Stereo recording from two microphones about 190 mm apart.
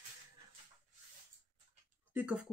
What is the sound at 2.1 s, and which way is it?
Speech, 5° right (ahead or behind).